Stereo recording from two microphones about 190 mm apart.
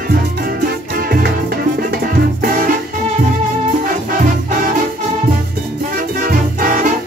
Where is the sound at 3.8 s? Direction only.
50° right (ahead or behind).